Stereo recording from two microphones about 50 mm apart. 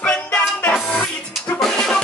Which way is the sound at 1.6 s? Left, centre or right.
Centre.